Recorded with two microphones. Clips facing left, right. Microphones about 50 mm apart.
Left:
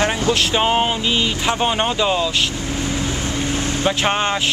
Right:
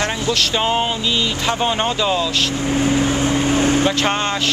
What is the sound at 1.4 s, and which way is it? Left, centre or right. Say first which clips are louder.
Speech: right 1 dB; centre.